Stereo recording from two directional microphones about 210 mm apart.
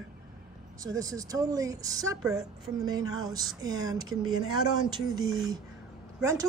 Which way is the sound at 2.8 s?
15° right (ahead or behind).